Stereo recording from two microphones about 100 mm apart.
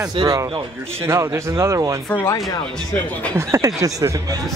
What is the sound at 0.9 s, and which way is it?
Speech, 25° right (ahead or behind).